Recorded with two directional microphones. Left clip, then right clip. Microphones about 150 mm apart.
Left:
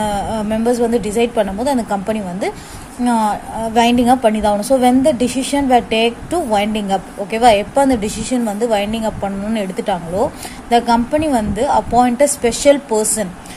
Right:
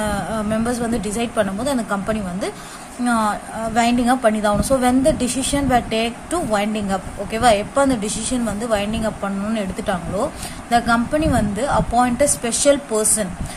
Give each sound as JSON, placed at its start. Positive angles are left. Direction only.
{"t": 0.0, "sound": "a woman's voice", "side_deg": 20}